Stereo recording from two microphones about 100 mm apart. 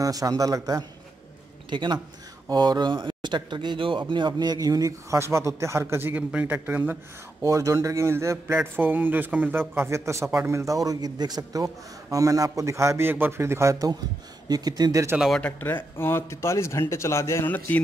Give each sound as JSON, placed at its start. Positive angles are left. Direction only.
{"t": 0.0, "sound": "speech", "side_deg": -35}
{"t": 1.7, "sound": "a man's voice", "side_deg": -50}
{"t": 7.4, "sound": "a man's voice", "side_deg": -35}
{"t": 15.1, "sound": "speech", "side_deg": -5}
{"t": 15.4, "sound": "speech", "side_deg": 20}